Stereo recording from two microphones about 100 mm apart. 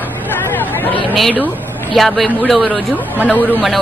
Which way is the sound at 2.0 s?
5° left (ahead or behind).